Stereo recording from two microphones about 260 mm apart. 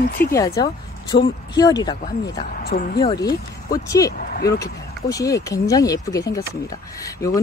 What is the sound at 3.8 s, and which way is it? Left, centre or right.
Speech, centre.